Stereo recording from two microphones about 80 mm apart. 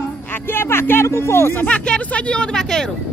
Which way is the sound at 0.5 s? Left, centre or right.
Left.